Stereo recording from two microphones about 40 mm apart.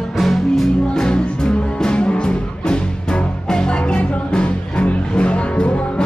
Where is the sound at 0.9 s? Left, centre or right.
Centre.